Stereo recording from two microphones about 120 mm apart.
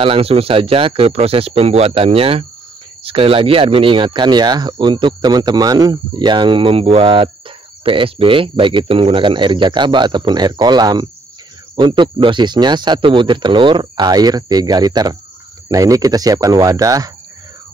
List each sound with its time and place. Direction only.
0.0 s speech: 50° right (ahead or behind); by 17.1 s 30° right (ahead or behind)